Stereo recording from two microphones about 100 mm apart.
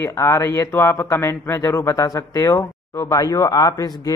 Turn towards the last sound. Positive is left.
turn(degrees=40)  # may be behind; listen again after turning